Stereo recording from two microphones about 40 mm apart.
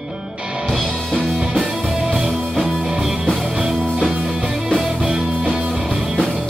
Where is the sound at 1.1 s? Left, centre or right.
Centre.